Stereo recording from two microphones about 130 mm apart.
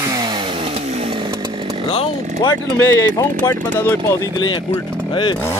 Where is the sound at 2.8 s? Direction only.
20° left (ahead or behind).